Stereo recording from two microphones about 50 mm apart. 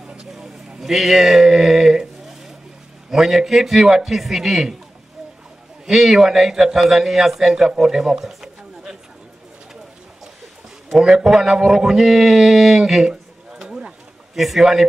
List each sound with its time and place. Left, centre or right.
0.3 s a sound: centre
3.1 s a man's voice: centre
5.9 s a man's voice: centre
10.9 s a man's voice: centre
13.1 s a sound: centre
14.3 s a man's voice: centre